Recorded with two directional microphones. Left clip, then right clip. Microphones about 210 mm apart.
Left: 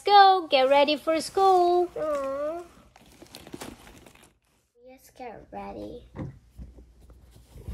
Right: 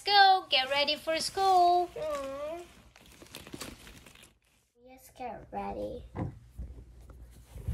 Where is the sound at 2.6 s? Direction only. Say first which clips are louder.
Left 3 dB; centre (ahead or behind).